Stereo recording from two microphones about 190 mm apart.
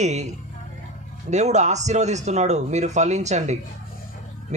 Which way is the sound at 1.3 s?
35° right (ahead or behind).